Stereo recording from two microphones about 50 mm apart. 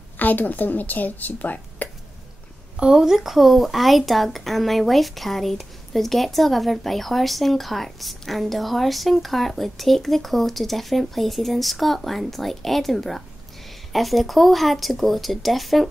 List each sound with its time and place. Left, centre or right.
0.2 s a woman's voice: left
2.8 s speech: centre